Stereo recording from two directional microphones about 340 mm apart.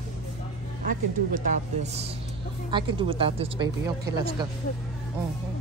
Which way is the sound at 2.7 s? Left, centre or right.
Centre.